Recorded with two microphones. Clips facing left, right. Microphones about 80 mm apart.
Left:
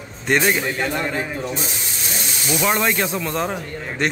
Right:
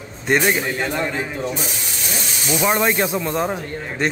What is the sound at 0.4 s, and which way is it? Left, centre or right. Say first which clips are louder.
A man's voice: even; centre.